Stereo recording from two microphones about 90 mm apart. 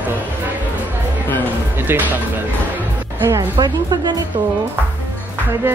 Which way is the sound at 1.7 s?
20° right (ahead or behind).